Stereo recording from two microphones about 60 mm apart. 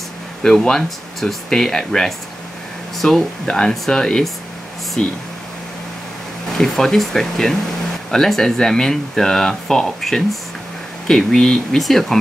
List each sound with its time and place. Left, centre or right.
0.6 s speech: centre
6.6 s speech: centre